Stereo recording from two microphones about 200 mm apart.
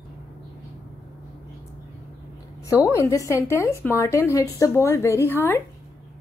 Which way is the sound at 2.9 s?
15° left (ahead or behind).